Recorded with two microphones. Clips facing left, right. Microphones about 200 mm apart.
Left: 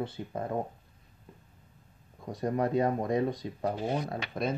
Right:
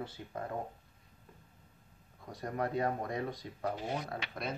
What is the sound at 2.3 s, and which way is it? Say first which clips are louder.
Speech: left 7 dB; 20° left (ahead or behind).